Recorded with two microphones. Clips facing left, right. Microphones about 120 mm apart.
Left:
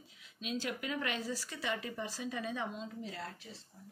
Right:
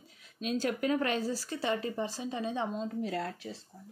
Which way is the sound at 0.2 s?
45° right (ahead or behind).